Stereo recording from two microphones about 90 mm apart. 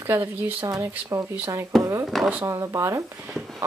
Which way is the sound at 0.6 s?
35° right (ahead or behind).